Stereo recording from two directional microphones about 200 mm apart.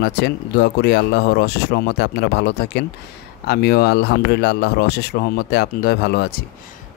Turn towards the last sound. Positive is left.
turn(degrees=55)  # may be behind; listen again after turning